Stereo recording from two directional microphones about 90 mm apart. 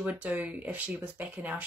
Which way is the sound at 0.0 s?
20° right (ahead or behind).